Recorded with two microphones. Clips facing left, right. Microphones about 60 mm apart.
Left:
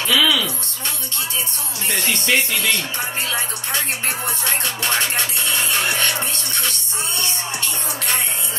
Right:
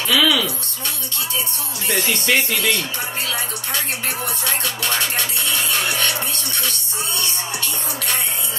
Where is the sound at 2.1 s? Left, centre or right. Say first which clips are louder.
Left 1 dB; right.